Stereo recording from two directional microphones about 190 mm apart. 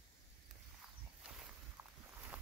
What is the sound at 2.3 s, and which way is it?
Boat, 10° right (ahead or behind).